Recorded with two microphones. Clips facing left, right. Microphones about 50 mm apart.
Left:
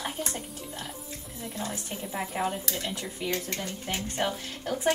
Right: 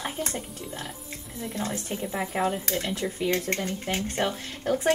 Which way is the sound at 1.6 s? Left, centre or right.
Right.